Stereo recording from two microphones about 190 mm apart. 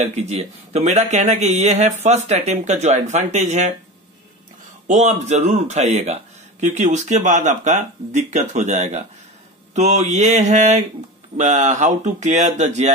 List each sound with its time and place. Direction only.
0.0 s a man's voice: 35° right (ahead or behind)
4.8 s a man's voice: 35° right (ahead or behind)